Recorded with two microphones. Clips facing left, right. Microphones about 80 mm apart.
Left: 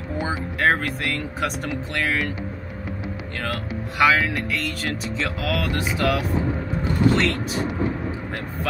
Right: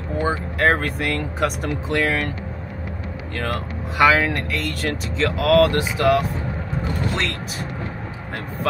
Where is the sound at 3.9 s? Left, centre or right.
Centre.